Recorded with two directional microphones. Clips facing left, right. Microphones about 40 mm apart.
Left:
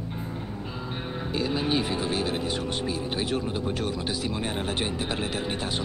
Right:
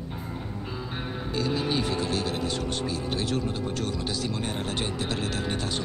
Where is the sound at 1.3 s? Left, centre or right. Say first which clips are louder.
Left 1 dB; centre.